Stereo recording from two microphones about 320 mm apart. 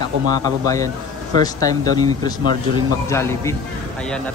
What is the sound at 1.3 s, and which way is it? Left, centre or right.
A man's voice, centre.